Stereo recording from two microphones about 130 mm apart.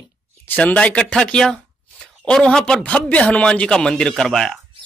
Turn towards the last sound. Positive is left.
turn(degrees=0)  # may be behind; listen again after turning